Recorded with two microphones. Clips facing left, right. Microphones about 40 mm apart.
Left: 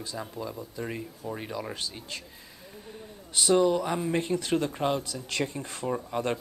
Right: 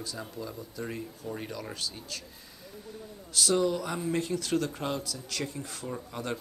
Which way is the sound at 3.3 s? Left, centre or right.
Left.